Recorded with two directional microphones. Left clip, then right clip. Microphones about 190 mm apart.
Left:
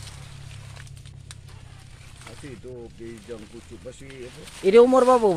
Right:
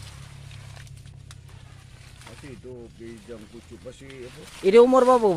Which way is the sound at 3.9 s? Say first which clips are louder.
Even; centre (ahead or behind).